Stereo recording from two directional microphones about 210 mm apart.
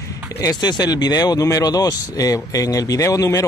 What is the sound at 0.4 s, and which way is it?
Speech, 20° left (ahead or behind).